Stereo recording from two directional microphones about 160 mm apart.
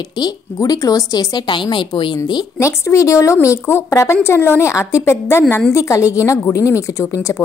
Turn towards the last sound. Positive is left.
turn(degrees=15)  # may be behind; listen again after turning